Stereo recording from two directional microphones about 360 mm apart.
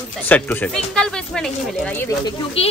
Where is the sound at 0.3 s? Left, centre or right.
Centre.